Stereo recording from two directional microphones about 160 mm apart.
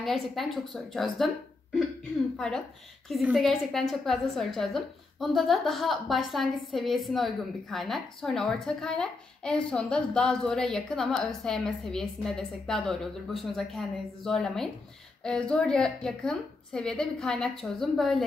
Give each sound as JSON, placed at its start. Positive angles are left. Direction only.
{"t": 0.0, "sound": "a woman's voice", "side_deg": 0}